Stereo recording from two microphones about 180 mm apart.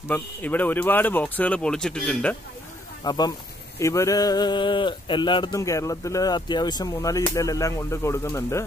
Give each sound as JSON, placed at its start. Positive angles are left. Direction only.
{"t": 0.1, "sound": "speech", "side_deg": 10}
{"t": 3.0, "sound": "speech", "side_deg": 20}